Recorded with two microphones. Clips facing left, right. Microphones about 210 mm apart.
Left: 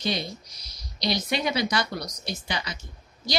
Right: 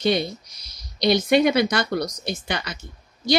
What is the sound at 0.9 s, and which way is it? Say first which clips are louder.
A woman's voice: right 10 dB; 55° right (ahead or behind).